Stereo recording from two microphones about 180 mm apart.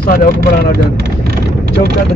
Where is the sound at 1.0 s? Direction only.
60° right (ahead or behind).